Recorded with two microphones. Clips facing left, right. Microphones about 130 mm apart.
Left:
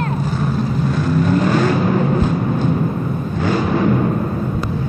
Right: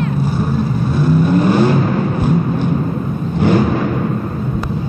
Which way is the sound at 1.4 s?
15° right (ahead or behind).